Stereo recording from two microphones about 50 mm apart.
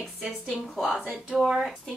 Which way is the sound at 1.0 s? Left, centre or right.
Centre.